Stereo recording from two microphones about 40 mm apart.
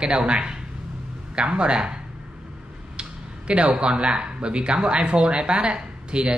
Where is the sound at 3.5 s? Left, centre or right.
Right.